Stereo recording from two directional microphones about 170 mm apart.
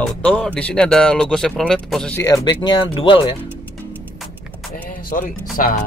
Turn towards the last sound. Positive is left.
turn(degrees=55)  # may be behind; listen again after turning